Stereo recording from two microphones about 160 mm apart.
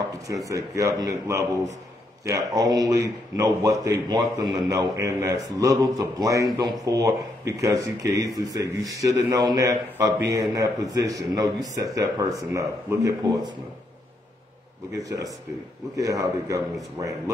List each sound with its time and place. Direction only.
0.3 s speech: 20° right (ahead or behind)
15.0 s speech: 20° right (ahead or behind)